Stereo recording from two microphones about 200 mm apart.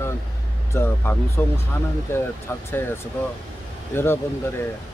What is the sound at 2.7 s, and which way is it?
Speech, 10° left (ahead or behind).